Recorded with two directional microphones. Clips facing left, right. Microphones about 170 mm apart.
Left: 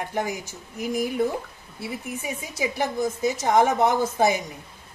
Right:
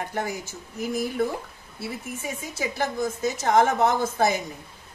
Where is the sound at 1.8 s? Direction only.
15° left (ahead or behind).